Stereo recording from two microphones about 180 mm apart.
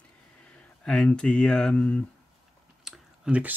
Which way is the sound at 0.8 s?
5° left (ahead or behind).